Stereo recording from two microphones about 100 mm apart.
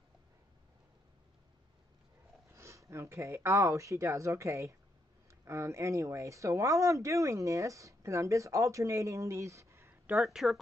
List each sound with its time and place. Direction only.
2.5 s speech: 30° right (ahead or behind)
10.1 s speech: centre (ahead or behind)